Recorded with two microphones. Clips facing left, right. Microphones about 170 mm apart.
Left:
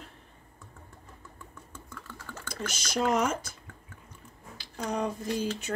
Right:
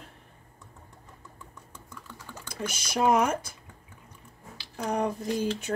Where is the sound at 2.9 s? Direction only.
60° right (ahead or behind).